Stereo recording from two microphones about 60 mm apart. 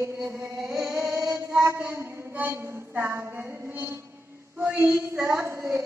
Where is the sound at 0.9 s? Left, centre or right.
Right.